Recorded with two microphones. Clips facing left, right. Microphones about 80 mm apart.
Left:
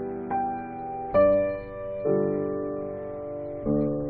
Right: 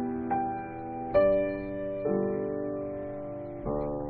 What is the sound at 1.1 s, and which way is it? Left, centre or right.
Music, centre.